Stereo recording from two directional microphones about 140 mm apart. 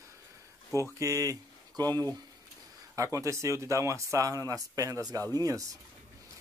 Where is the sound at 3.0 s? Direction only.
20° right (ahead or behind).